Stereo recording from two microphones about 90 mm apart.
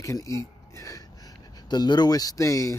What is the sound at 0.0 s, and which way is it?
Speech, 35° left (ahead or behind).